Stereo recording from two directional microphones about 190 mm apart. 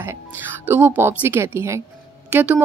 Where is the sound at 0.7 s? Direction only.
10° right (ahead or behind).